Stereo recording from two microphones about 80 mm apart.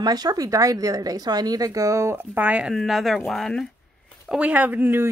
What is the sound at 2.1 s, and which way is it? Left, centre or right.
Speech, right.